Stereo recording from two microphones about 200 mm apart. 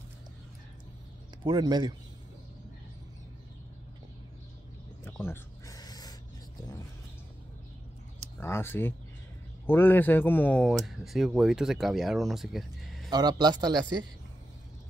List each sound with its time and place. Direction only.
1.4 s speech: 20° right (ahead or behind)
5.0 s a sound: 10° left (ahead or behind)
8.4 s speech: 10° left (ahead or behind)
13.1 s speech: 20° right (ahead or behind)